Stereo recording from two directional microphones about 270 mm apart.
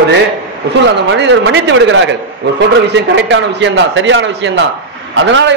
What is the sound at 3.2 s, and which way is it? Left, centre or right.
A man's voice, right.